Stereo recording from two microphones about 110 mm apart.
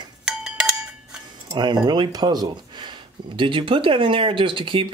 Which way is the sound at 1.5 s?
40° right (ahead or behind).